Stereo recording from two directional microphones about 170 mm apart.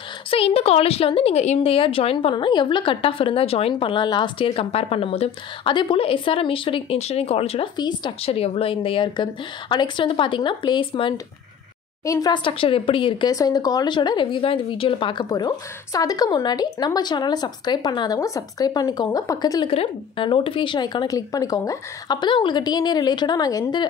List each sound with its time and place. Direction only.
0.3 s speech: 35° left (ahead or behind)
12.0 s speech: 20° left (ahead or behind)
13.3 s a woman's voice: 20° left (ahead or behind)